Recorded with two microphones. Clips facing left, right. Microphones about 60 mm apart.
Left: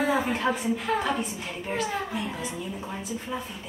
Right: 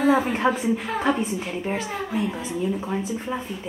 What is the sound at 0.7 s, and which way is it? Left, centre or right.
A woman's voice, centre.